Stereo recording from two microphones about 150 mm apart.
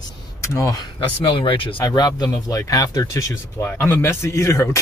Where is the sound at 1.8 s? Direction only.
25° left (ahead or behind).